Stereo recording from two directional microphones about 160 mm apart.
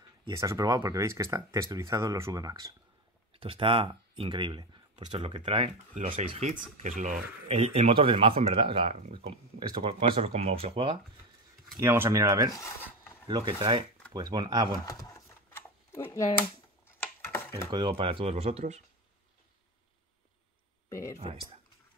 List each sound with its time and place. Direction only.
0.3 s speech: 20° right (ahead or behind)
3.3 s speech: 35° right (ahead or behind)
6.8 s speech: 50° right (ahead or behind)
11.8 s speech: 15° right (ahead or behind)
12.5 s a sound: 15° left (ahead or behind)
13.3 s speech: 30° right (ahead or behind)
14.9 s a sound: 20° left (ahead or behind)
16.3 s computer keyboard: 15° left (ahead or behind)
17.6 s speech: 30° right (ahead or behind)
20.9 s speech: 20° left (ahead or behind)